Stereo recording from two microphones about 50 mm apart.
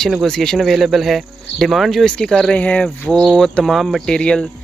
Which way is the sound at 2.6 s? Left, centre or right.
Left.